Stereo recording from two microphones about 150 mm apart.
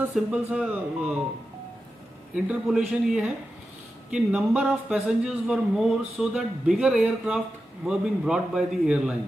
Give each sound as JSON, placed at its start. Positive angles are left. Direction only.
{"t": 0.1, "sound": "speech", "side_deg": -5}
{"t": 2.3, "sound": "a man's voice", "side_deg": -5}